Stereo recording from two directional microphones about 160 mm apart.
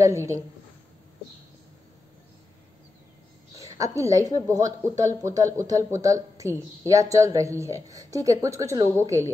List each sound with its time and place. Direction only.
0.0 s a woman's voice: 20° right (ahead or behind)
3.5 s a woman's voice: 20° right (ahead or behind)